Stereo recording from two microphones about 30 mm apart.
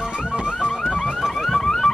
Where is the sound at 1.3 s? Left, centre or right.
Centre.